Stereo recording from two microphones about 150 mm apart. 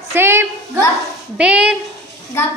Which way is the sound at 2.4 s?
15° left (ahead or behind).